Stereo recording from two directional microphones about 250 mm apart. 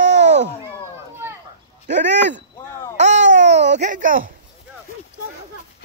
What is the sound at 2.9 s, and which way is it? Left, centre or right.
Babbling, right.